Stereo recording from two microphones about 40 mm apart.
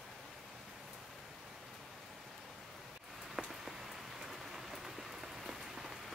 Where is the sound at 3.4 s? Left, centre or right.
Centre.